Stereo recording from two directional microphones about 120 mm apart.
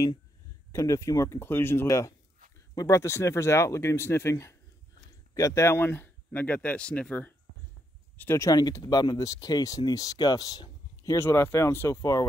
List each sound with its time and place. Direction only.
0.7 s speech: 25° left (ahead or behind)
8.2 s speech: 20° left (ahead or behind)
11.1 s speech: 20° left (ahead or behind)